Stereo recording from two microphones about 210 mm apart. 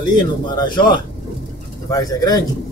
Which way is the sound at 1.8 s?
15° left (ahead or behind).